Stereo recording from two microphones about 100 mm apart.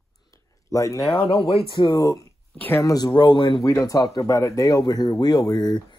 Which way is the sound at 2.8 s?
35° left (ahead or behind).